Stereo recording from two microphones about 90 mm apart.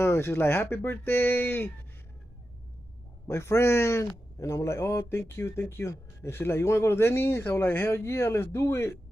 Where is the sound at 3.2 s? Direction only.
35° left (ahead or behind).